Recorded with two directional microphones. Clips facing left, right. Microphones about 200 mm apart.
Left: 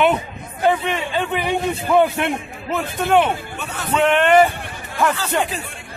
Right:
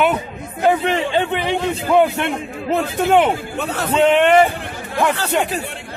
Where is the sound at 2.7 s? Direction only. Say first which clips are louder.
Right 2 dB; 30° right (ahead or behind).